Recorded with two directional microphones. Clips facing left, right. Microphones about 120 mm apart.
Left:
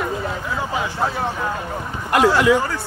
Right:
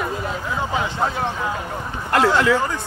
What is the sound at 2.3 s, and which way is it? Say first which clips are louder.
Speech: left 2 dB; 15° left (ahead or behind).